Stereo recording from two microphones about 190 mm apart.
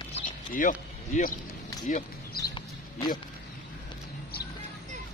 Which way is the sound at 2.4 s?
20° left (ahead or behind).